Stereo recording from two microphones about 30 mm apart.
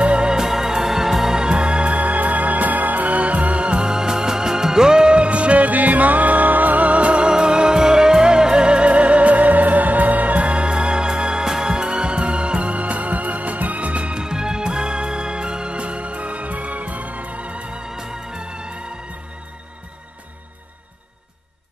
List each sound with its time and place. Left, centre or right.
0.0 s organ: right
0.3 s music: centre
1.3 s music: right
2.0 s music: right
5.7 s music: right
10.5 s music: right
14.1 s music: right
17.8 s music: right